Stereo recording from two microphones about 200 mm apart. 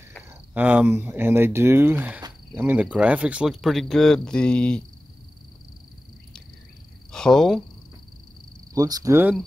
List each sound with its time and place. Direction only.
0.3 s speech: 10° right (ahead or behind)
7.1 s speech: 5° left (ahead or behind)
8.7 s speech: 20° right (ahead or behind)